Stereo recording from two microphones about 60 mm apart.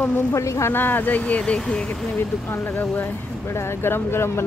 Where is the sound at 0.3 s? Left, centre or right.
Left.